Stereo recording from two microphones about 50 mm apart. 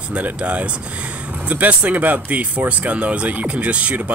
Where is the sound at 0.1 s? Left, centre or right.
Right.